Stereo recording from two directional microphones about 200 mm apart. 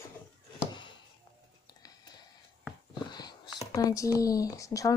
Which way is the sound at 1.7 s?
20° left (ahead or behind).